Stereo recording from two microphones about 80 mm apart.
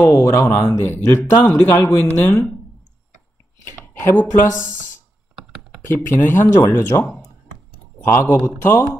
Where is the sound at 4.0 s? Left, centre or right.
Left.